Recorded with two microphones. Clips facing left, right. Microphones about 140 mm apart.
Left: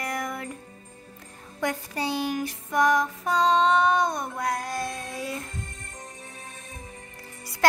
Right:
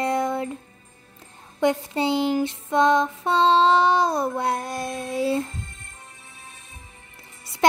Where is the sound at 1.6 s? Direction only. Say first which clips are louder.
Right 7 dB; 25° right (ahead or behind).